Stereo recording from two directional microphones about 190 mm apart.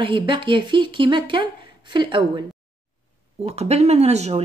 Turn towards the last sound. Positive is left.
turn(degrees=-35)  # may be behind; listen again after turning